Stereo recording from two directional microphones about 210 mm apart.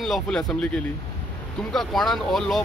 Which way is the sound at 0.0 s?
Centre (ahead or behind).